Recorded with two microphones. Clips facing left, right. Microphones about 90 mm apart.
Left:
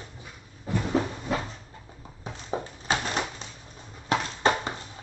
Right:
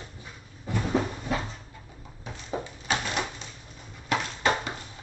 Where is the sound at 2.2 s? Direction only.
30° left (ahead or behind).